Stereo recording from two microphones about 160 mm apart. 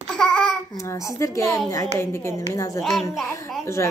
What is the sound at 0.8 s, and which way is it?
A woman's voice, 20° left (ahead or behind).